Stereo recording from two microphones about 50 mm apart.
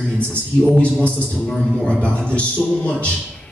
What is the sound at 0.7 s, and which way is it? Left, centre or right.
A man's voice, left.